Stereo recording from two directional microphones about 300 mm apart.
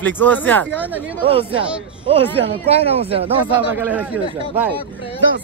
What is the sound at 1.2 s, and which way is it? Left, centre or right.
Speech, centre.